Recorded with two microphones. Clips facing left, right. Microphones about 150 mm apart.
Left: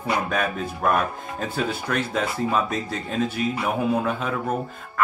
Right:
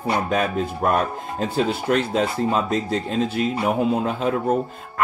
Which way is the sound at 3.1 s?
30° right (ahead or behind).